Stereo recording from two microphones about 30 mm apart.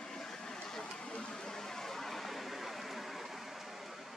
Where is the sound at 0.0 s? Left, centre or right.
Centre.